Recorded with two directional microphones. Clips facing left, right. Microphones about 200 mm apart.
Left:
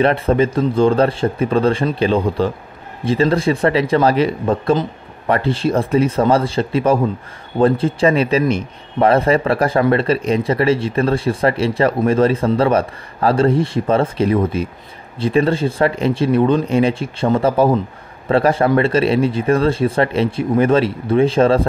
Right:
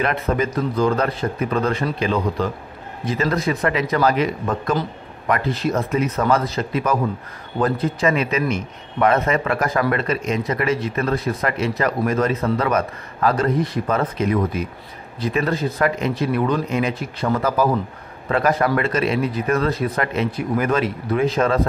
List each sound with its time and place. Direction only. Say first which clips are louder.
0.0 s a man's voice: left 6 dB; 30° left (ahead or behind)